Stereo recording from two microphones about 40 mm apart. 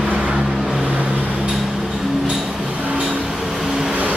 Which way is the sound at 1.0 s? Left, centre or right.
Right.